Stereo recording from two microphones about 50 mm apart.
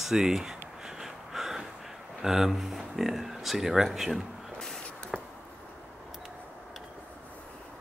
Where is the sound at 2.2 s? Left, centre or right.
Centre.